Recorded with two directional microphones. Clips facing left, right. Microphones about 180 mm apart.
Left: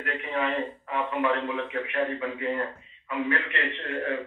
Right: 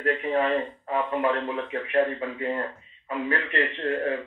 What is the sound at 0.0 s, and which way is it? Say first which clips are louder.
Speech: right 6 dB; 35° right (ahead or behind).